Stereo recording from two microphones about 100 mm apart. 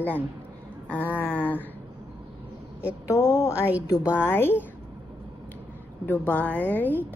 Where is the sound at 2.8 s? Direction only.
30° left (ahead or behind).